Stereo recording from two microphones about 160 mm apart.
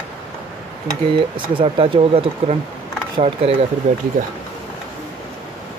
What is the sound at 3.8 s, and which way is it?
Speech, 45° right (ahead or behind).